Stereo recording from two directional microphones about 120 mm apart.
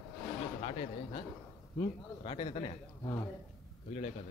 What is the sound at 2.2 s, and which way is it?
Speech, 50° left (ahead or behind).